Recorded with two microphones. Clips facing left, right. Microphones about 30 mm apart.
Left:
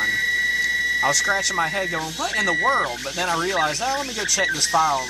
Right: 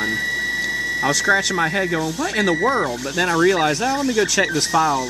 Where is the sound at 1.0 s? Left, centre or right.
Centre.